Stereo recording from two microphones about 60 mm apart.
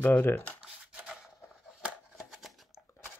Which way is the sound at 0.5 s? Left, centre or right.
Centre.